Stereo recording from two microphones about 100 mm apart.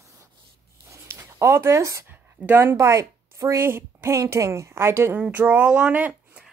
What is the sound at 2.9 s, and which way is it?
A woman's voice, 30° right (ahead or behind).